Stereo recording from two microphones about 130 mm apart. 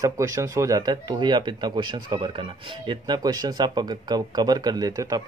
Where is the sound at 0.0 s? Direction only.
25° right (ahead or behind).